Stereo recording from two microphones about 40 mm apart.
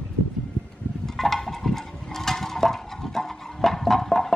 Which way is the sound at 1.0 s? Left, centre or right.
Centre.